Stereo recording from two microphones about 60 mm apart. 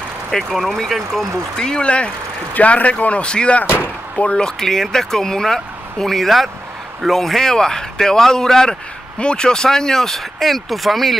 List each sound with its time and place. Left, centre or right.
0.3 s speech: centre
3.6 s speech: left
4.3 s speech: centre